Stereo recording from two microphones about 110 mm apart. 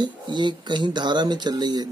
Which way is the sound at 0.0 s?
45° right (ahead or behind).